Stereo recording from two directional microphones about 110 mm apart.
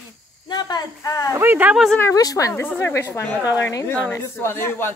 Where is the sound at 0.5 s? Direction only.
40° left (ahead or behind).